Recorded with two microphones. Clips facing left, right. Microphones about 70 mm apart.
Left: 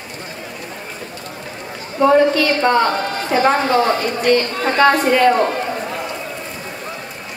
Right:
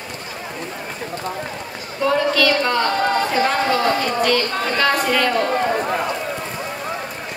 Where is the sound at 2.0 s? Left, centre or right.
Left.